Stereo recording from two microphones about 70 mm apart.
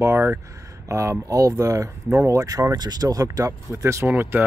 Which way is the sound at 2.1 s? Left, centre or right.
Right.